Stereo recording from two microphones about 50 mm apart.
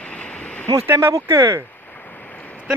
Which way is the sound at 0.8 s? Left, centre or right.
Right.